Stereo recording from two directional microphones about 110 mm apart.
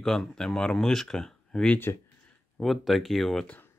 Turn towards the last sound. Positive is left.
turn(degrees=5)  # may be behind; listen again after turning